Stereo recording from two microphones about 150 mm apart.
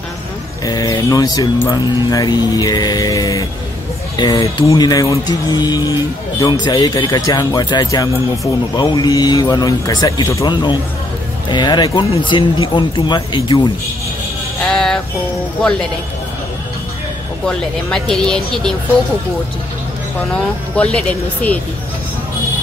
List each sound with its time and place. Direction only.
0.7 s a man's voice: 25° left (ahead or behind)
14.7 s music: 5° left (ahead or behind)
17.5 s speech: 5° left (ahead or behind)
20.7 s speech: 10° left (ahead or behind)